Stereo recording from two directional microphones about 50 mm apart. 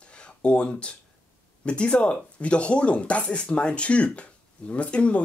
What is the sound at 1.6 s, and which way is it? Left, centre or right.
Speech, left.